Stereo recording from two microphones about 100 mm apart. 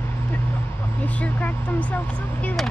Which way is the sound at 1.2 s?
15° left (ahead or behind).